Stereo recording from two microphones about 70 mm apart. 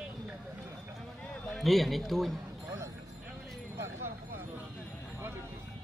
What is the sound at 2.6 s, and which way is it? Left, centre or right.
Music, right.